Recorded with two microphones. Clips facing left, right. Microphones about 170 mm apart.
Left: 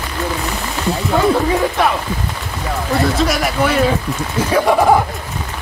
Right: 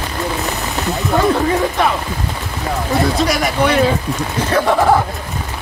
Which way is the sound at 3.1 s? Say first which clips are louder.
Even; centre (ahead or behind).